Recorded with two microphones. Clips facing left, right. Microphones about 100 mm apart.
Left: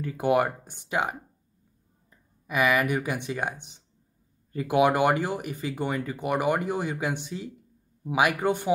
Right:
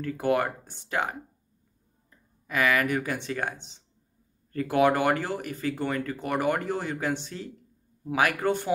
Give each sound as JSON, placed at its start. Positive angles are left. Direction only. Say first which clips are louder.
{"t": 0.0, "sound": "speech", "louder": "left 2 dB", "side_deg": 15}